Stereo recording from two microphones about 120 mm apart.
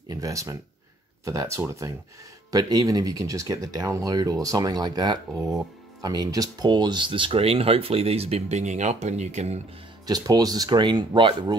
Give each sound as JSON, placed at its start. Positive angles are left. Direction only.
{"t": 0.1, "sound": "speech", "side_deg": -30}
{"t": 10.0, "sound": "speech", "side_deg": -35}